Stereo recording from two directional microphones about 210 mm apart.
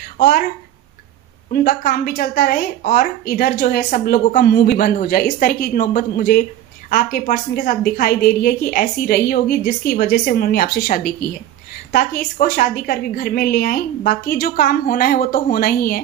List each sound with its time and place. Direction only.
0.2 s a woman's voice: 45° left (ahead or behind)
1.5 s a woman's voice: 45° left (ahead or behind)